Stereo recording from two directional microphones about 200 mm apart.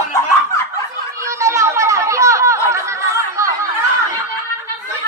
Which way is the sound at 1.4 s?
15° right (ahead or behind).